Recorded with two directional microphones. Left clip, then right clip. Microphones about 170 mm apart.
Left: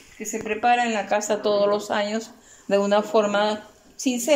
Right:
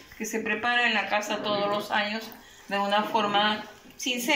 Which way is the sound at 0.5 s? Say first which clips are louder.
Left 5 dB; 70° left (ahead or behind).